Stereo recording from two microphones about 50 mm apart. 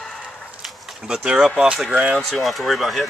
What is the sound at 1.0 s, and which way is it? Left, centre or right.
Speech, centre.